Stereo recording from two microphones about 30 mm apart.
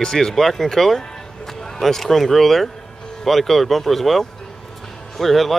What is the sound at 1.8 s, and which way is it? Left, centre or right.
Speech, centre.